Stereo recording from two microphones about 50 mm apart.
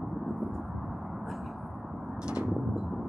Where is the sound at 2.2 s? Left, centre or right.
Centre.